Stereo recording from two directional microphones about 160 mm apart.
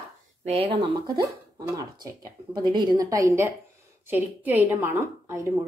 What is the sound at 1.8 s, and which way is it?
A woman's voice, 25° right (ahead or behind).